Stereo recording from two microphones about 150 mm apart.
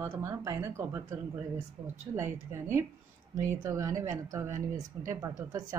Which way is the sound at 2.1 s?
20° right (ahead or behind).